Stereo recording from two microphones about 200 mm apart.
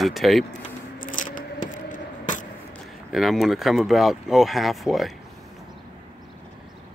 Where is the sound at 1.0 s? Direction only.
40° left (ahead or behind).